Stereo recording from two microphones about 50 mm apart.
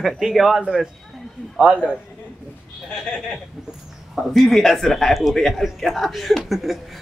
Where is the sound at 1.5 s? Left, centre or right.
Right.